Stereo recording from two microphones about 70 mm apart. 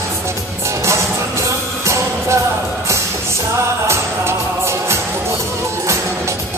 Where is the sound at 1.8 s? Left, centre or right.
Right.